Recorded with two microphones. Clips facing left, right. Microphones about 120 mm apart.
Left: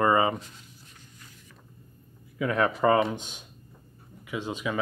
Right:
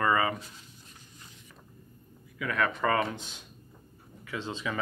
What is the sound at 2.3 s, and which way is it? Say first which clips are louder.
Speech: left 4 dB; 25° left (ahead or behind).